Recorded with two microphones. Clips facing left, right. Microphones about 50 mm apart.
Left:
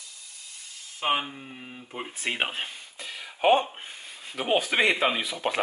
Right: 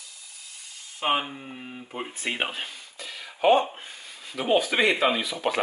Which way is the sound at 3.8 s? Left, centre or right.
Left.